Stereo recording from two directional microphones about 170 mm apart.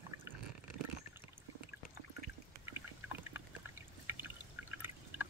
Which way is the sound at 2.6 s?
15° right (ahead or behind).